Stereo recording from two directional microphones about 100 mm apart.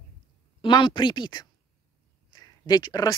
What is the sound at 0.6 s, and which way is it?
A woman's voice, 55° left (ahead or behind).